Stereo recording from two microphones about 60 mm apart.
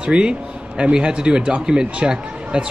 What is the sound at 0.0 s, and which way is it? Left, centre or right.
A man's voice, centre.